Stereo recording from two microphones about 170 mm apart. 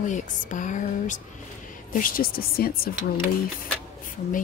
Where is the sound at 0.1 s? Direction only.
45° left (ahead or behind).